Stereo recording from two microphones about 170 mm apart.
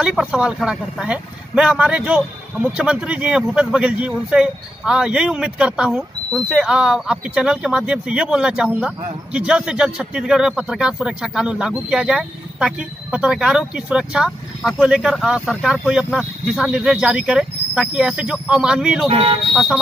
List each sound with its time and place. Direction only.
0.0 s speech: 5° right (ahead or behind)
19.0 s speech: 35° right (ahead or behind)
19.5 s speech: centre (ahead or behind)